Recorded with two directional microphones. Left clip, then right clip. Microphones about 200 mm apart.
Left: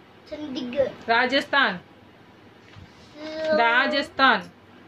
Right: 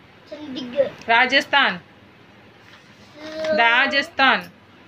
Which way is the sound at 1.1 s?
10° left (ahead or behind).